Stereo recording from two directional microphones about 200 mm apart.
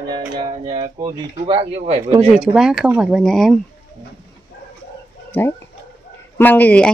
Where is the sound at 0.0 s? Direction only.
20° right (ahead or behind).